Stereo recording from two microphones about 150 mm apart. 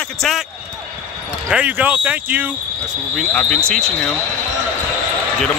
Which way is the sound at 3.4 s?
5° left (ahead or behind).